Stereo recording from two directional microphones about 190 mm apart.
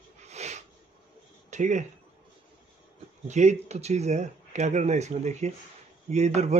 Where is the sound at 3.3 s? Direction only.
40° right (ahead or behind).